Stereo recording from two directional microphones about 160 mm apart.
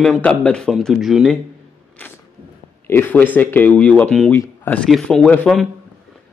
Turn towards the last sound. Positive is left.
turn(degrees=5)  # may be behind; listen again after turning